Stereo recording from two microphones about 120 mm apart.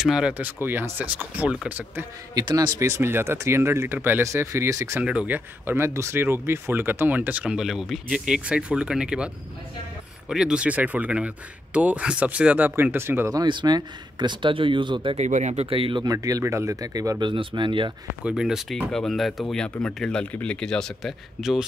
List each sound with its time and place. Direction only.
0.0 s speech: 5° right (ahead or behind)
2.3 s speech: 35° right (ahead or behind)
2.8 s speech: 20° right (ahead or behind)
5.0 s speech: 10° right (ahead or behind)
13.3 s speech: 35° right (ahead or behind)
15.1 s speech: 75° right (ahead or behind); by 16.0 s 50° right (ahead or behind)
16.0 s speech: 30° right (ahead or behind)
17.2 s speech: 45° right (ahead or behind)
18.2 s speech: 5° right (ahead or behind)